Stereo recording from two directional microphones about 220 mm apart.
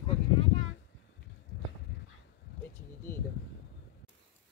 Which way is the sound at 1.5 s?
50° left (ahead or behind).